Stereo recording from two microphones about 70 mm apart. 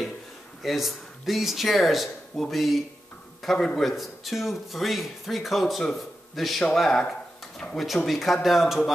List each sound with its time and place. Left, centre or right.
0.6 s a man's voice: centre